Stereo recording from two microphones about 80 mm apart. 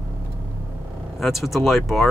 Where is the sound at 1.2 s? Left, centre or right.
Centre.